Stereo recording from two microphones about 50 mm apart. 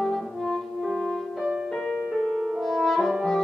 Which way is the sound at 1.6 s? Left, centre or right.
Centre.